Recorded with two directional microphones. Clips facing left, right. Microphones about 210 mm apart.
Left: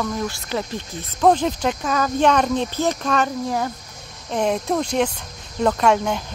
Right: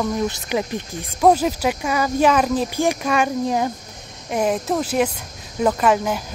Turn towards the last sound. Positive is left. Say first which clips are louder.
# even
turn(degrees=-5)  # may be behind; listen again after turning